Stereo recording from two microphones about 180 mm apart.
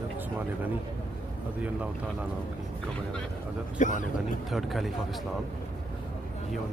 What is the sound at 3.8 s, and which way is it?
Speech, 45° left (ahead or behind).